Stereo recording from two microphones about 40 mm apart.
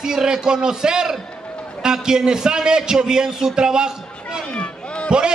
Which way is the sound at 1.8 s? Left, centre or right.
Centre.